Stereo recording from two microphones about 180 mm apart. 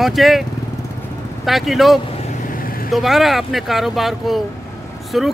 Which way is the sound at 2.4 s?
50° left (ahead or behind).